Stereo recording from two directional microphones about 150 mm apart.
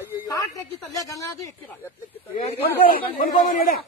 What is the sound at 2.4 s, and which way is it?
A man's voice, 70° left (ahead or behind).